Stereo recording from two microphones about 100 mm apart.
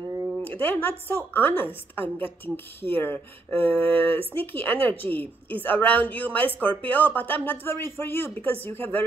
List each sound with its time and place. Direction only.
0.4 s a woman's voice: 20° left (ahead or behind)